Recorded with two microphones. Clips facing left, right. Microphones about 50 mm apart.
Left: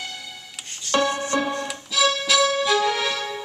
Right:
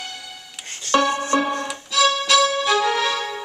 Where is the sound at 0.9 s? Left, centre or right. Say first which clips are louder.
Right 3 dB; right.